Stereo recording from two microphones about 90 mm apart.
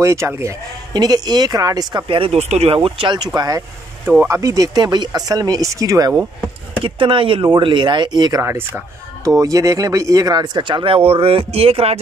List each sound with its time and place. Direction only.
0.0 s speech: 30° right (ahead or behind)
0.9 s speech: 50° right (ahead or behind)
2.0 s speech: 85° right; by 3.3 s 65° right (ahead or behind)
3.3 s speech: 40° right (ahead or behind)
6.8 s speech: 70° right (ahead or behind); by 8.4 s 50° right (ahead or behind)
8.4 s speech: 25° right (ahead or behind)
9.2 s speech: 40° right (ahead or behind); by 11.0 s 70° right (ahead or behind)
11.1 s speech: 90° right